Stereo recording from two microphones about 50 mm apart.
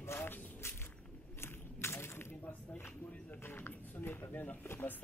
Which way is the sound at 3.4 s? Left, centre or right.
Left.